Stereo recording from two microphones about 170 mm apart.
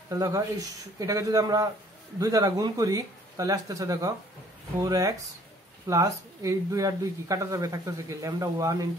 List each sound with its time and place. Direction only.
0.1 s speech: 20° right (ahead or behind)